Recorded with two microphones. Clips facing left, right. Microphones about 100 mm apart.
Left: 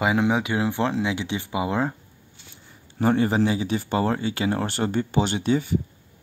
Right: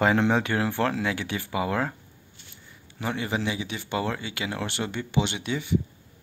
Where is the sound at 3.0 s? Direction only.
40° left (ahead or behind).